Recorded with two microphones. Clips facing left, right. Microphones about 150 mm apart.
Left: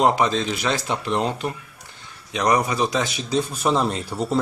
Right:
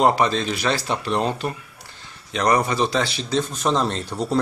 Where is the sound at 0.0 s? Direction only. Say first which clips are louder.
Right 1 dB; 15° left (ahead or behind).